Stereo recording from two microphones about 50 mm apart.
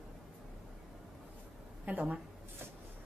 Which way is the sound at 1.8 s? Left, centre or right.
Right.